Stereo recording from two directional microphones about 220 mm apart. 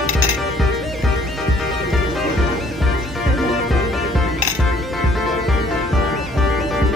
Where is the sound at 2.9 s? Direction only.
Centre (ahead or behind).